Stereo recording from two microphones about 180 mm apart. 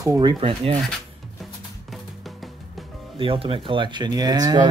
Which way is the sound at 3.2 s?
30° right (ahead or behind).